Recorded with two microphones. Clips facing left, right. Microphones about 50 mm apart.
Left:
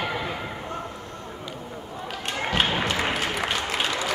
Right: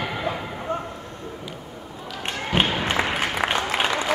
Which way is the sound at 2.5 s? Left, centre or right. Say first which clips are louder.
Right 3 dB; right.